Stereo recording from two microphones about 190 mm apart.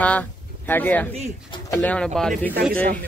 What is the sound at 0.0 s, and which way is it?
Speech, 10° left (ahead or behind).